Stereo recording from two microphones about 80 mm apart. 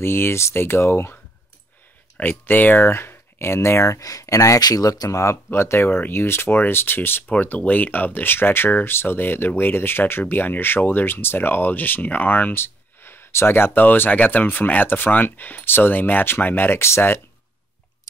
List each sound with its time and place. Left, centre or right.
0.0 s speech: left
2.1 s speech: left
5.2 s speech: left